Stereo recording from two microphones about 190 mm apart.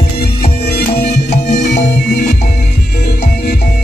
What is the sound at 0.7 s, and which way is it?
Music, 60° left (ahead or behind).